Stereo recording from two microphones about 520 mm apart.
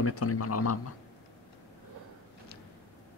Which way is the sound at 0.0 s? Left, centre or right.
Left.